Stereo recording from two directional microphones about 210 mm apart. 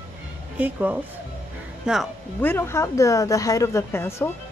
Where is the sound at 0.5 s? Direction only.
5° right (ahead or behind).